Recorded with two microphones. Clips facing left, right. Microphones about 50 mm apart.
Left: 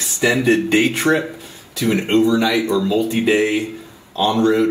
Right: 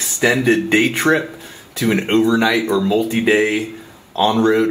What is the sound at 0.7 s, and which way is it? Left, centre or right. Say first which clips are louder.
Speech: right 1 dB; right.